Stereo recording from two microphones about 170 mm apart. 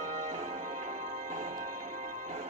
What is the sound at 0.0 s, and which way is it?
Music, 40° right (ahead or behind).